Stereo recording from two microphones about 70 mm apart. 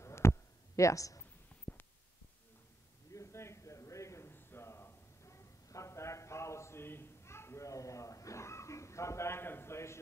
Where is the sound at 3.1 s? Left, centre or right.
Left.